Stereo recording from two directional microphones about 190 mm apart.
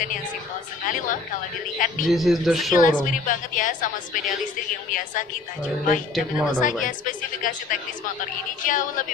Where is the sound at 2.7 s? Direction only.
45° left (ahead or behind).